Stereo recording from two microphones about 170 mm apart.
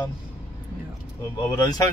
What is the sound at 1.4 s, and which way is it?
Speech, 20° left (ahead or behind).